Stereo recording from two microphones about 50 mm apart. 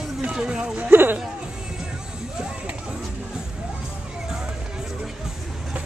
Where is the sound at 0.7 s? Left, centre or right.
Right.